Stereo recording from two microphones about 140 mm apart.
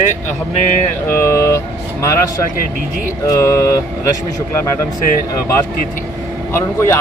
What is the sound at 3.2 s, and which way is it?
Speech, 20° left (ahead or behind).